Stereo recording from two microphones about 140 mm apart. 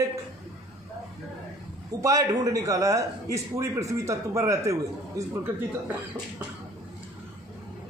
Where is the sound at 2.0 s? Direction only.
25° right (ahead or behind).